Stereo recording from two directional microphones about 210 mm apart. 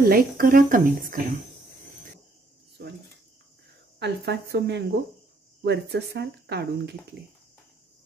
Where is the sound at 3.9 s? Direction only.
55° right (ahead or behind).